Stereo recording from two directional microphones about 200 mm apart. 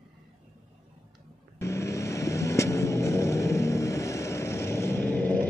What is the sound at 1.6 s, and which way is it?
Vehicle, 15° left (ahead or behind).